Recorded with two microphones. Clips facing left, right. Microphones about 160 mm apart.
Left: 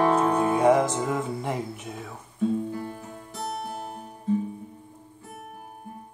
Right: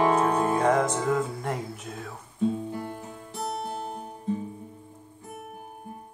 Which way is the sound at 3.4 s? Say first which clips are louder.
Right 1 dB; 20° right (ahead or behind).